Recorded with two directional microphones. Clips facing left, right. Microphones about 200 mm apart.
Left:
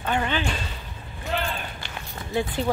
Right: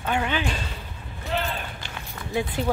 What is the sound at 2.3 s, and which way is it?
Speech, 10° right (ahead or behind).